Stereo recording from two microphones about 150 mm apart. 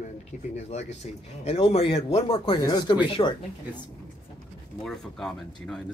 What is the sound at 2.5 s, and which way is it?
Speech, 25° left (ahead or behind).